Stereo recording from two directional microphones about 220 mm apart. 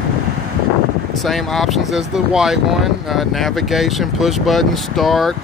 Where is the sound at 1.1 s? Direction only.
Centre (ahead or behind).